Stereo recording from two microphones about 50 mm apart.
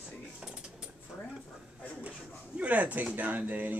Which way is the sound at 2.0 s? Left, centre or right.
Right.